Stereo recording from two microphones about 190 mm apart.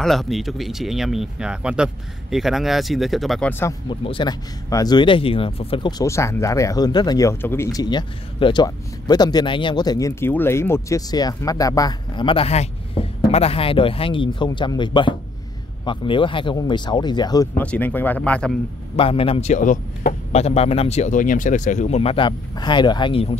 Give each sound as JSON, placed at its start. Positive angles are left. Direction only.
{"t": 0.0, "sound": "speech", "side_deg": 0}
{"t": 4.0, "sound": "speech", "side_deg": 25}
{"t": 17.6, "sound": "speech", "side_deg": 10}
{"t": 18.9, "sound": "speech", "side_deg": 30}